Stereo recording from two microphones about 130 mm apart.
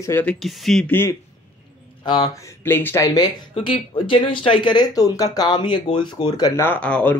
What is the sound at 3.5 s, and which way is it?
Speech, 45° left (ahead or behind).